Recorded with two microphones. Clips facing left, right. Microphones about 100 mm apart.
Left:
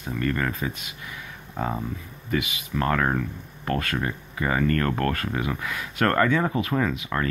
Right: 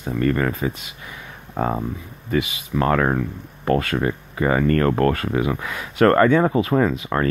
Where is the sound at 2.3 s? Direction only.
30° right (ahead or behind).